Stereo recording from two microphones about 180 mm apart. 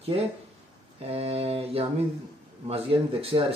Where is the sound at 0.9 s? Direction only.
35° right (ahead or behind).